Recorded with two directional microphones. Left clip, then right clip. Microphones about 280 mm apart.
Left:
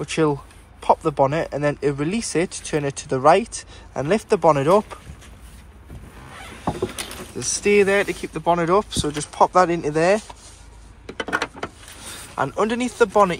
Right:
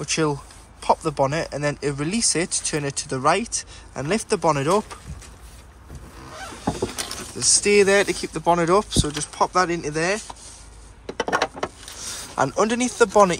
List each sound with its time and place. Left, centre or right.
0.0 s speech: centre
6.8 s speech: centre
11.1 s a sound: right
12.4 s speech: centre